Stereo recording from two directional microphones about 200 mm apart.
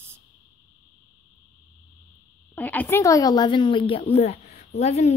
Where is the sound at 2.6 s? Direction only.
10° left (ahead or behind); by 5.2 s 35° left (ahead or behind).